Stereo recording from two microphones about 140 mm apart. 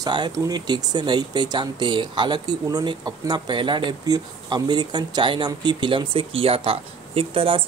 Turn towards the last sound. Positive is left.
turn(degrees=-40)  # may be behind; listen again after turning